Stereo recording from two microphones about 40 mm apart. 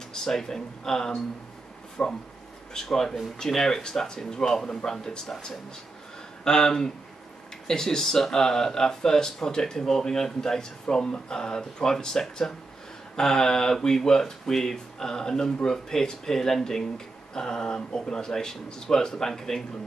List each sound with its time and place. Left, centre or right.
0.1 s speech: centre
2.0 s speech: left
2.7 s speech: centre